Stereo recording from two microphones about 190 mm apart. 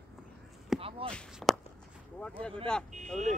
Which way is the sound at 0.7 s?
30° right (ahead or behind).